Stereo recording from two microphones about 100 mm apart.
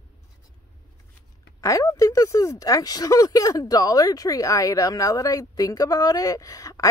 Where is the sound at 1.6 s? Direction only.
35° left (ahead or behind).